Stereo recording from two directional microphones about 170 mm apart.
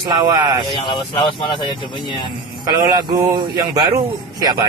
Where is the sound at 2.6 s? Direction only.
25° right (ahead or behind).